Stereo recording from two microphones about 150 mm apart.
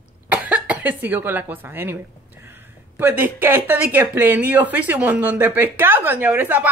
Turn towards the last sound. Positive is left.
turn(degrees=-10)  # may be behind; listen again after turning